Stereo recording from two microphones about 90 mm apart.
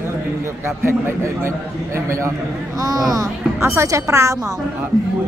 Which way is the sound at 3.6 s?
30° right (ahead or behind).